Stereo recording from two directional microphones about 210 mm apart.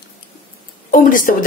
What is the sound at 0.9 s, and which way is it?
Speech, 40° left (ahead or behind).